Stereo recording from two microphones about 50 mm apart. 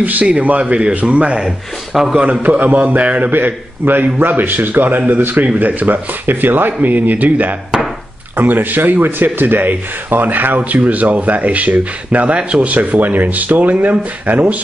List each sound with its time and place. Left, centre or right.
0.0 s a man's voice: right